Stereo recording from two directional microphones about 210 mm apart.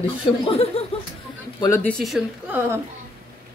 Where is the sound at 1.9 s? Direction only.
Centre (ahead or behind).